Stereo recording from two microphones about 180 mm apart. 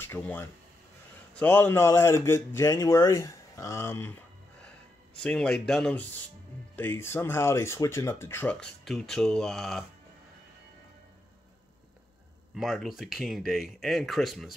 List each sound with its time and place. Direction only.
0.0 s a man's voice: 10° left (ahead or behind)
12.5 s speech: centre (ahead or behind)